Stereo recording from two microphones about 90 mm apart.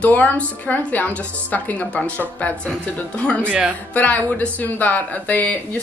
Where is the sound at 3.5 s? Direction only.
15° right (ahead or behind).